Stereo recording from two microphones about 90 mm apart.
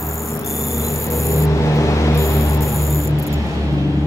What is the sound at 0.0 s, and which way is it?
Vehicle, 35° left (ahead or behind).